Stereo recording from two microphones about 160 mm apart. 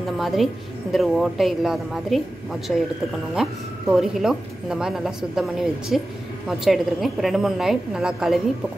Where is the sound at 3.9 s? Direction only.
5° right (ahead or behind).